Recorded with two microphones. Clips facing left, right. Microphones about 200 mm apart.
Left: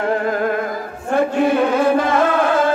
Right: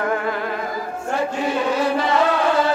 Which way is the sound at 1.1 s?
55° left (ahead or behind).